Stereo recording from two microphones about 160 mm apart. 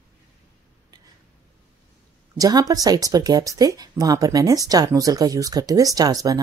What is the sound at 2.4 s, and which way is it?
Speech, 25° right (ahead or behind).